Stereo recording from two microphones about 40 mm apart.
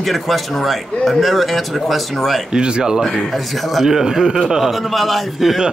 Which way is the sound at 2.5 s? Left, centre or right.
Right.